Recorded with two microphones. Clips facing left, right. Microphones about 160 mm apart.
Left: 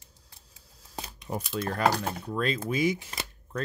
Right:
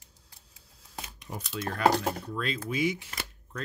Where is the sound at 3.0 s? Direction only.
25° left (ahead or behind).